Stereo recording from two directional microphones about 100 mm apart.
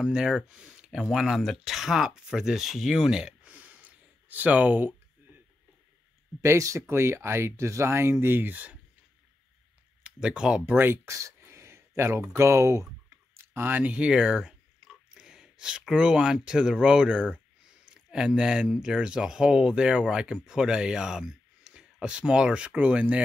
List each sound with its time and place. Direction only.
0.0 s speech: 5° right (ahead or behind)
6.4 s speech: 30° right (ahead or behind)
10.0 s speech: 10° right (ahead or behind)
10.6 s speech: 20° right (ahead or behind)